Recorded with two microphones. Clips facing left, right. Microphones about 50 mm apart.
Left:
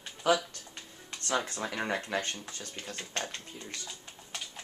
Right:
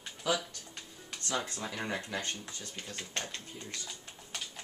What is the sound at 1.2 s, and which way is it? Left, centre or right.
Speech, left.